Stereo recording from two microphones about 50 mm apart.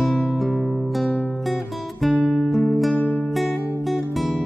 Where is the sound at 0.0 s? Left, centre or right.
Centre.